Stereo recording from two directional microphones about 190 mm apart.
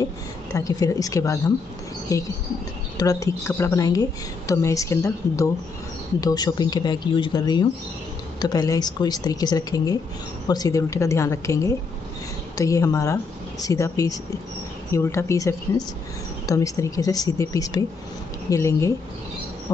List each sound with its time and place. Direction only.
0.0 s a woman's voice: 15° left (ahead or behind)